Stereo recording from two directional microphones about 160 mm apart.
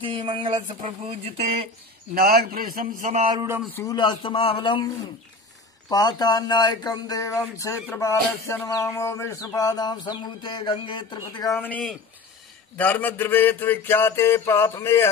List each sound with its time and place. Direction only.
0.0 s speech: 30° right (ahead or behind)
2.1 s a man's voice: 75° right (ahead or behind); by 3.3 s 50° right (ahead or behind)
3.9 s speech: 25° left (ahead or behind)
11.6 s mantra: 5° left (ahead or behind)